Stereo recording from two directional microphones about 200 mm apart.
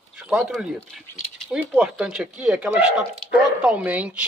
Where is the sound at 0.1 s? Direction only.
5° right (ahead or behind).